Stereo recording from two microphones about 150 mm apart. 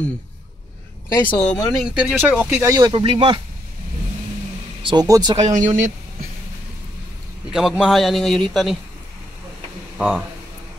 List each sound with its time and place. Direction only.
1.2 s speech: 10° left (ahead or behind)
1.8 s a man's voice: 5° right (ahead or behind)
2.7 s speech: 30° right (ahead or behind)
4.8 s speech: 25° right (ahead or behind)
5.6 s speech: 55° right (ahead or behind)
7.5 s a man's voice: 5° right (ahead or behind)
9.9 s speech: 10° right (ahead or behind)